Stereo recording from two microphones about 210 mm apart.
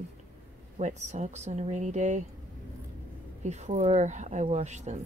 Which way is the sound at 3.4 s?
35° right (ahead or behind).